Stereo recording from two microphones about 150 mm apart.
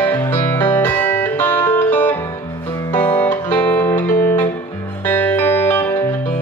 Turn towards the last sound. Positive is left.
turn(degrees=15)  # may be behind; listen again after turning